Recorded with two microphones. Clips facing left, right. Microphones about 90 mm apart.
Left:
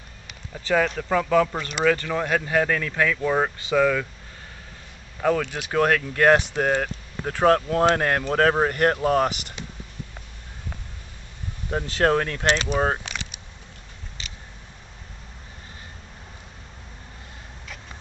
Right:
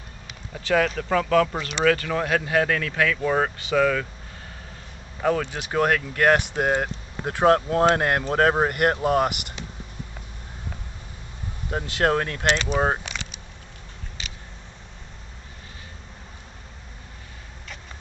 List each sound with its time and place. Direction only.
0.3 s speech: centre (ahead or behind)
5.2 s speech: 10° right (ahead or behind)
12.0 s speech: 15° right (ahead or behind)